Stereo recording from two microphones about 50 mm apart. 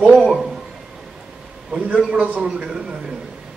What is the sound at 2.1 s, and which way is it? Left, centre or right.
Speech, right.